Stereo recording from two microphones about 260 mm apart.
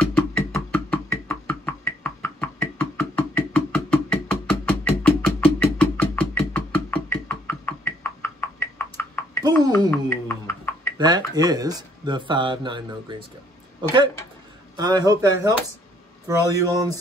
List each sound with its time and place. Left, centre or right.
0.0 s a sound: centre
11.0 s speech: centre
14.8 s speech: centre